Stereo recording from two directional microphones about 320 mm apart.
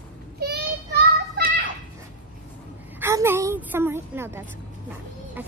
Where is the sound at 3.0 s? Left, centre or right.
Centre.